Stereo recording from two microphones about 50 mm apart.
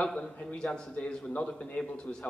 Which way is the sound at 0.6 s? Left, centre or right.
Centre.